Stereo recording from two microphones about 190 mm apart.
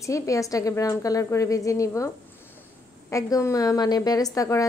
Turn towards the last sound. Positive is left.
turn(degrees=20)  # may be behind; listen again after turning